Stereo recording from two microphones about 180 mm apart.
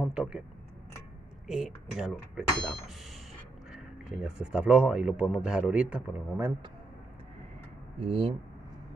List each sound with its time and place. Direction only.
0.0 s a sound: 5° right (ahead or behind)
1.5 s speech: centre (ahead or behind)
8.0 s speech: 30° right (ahead or behind)